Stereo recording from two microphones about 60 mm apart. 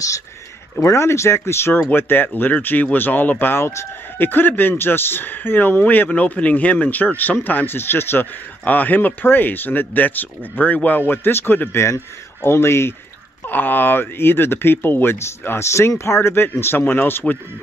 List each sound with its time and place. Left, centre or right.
0.8 s speech: left
1.7 s speech: left
8.6 s speech: left
11.7 s speech: left
13.5 s speech: left